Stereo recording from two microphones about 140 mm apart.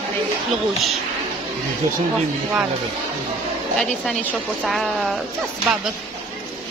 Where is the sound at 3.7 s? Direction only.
Centre (ahead or behind).